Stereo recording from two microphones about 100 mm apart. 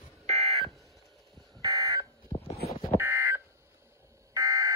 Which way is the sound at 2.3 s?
90° left.